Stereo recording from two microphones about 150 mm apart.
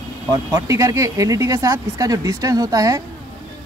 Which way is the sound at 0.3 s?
20° right (ahead or behind).